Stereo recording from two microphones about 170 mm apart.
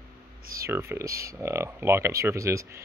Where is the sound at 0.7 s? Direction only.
15° right (ahead or behind).